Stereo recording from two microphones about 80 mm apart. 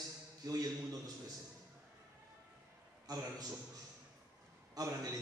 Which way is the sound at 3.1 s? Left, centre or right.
Right.